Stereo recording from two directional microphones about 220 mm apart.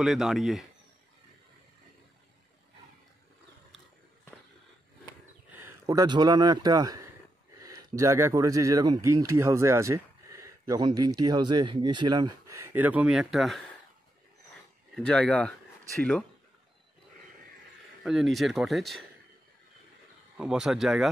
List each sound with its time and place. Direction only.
0.0 s speech: centre (ahead or behind)
5.6 s a man's voice: 15° right (ahead or behind)
15.0 s speech: 5° left (ahead or behind)
18.0 s speech: centre (ahead or behind)
20.3 s speech: centre (ahead or behind)